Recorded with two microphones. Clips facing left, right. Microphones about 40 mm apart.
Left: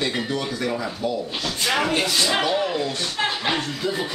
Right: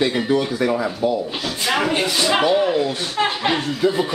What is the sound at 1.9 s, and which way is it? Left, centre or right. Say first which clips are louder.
Speech: right 3 dB; centre.